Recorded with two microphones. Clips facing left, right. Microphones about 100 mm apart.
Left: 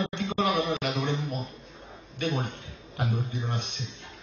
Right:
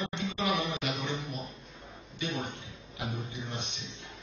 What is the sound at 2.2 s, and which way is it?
Speech, 55° left (ahead or behind).